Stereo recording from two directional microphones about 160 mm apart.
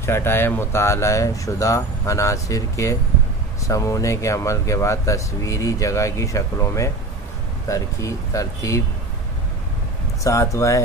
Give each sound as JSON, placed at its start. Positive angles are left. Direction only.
{"t": 0.0, "sound": "speech", "side_deg": 15}
{"t": 10.2, "sound": "speech", "side_deg": 20}